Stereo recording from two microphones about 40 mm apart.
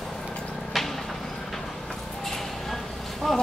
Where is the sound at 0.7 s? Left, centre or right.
Centre.